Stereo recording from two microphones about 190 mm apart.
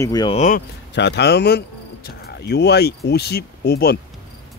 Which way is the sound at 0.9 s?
65° left (ahead or behind).